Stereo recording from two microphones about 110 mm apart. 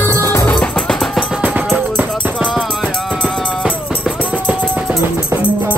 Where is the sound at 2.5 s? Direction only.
5° left (ahead or behind).